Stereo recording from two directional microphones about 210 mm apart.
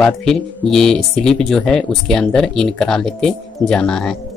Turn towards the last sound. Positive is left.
turn(degrees=5)  # may be behind; listen again after turning